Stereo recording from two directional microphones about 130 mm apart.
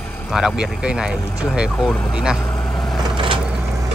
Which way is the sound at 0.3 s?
Centre (ahead or behind).